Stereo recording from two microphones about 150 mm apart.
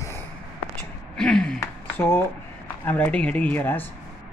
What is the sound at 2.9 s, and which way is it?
Speech, 10° left (ahead or behind).